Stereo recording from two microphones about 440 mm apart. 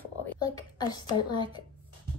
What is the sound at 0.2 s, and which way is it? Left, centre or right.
Whispering, centre.